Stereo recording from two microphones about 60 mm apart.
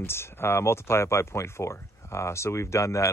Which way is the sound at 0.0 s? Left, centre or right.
Left.